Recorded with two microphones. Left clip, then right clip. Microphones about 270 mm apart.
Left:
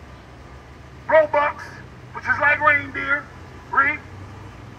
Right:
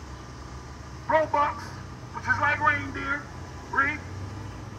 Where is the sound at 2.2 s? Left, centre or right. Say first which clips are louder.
Left 6 dB; centre.